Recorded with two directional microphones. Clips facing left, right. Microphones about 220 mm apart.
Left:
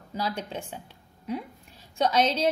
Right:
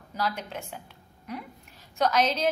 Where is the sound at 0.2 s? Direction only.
30° left (ahead or behind).